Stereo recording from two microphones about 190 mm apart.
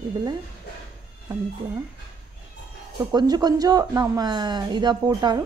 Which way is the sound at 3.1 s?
20° right (ahead or behind).